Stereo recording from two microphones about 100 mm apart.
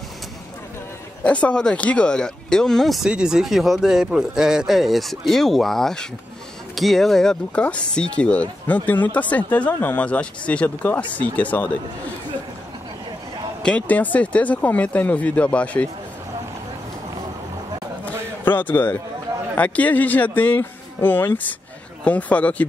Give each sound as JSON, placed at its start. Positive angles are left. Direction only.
{"t": 1.2, "sound": "speech", "side_deg": 10}
{"t": 13.6, "sound": "speech", "side_deg": 10}
{"t": 18.0, "sound": "a sound", "side_deg": 20}
{"t": 19.5, "sound": "speech", "side_deg": 15}